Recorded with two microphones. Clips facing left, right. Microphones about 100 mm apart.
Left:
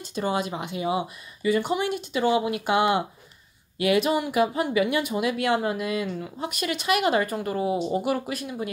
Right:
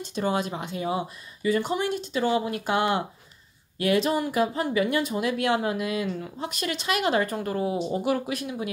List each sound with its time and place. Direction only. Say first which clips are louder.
0.1 s a woman's voice: even; 5° left (ahead or behind)
1.8 s speech: even; 55° left (ahead or behind)
2.1 s a woman's voice: left 3 dB; 10° left (ahead or behind)